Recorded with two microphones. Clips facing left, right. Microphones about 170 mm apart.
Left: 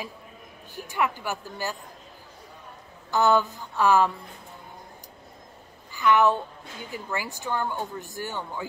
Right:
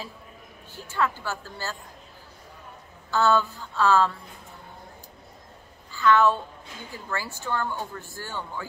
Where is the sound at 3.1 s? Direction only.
15° left (ahead or behind).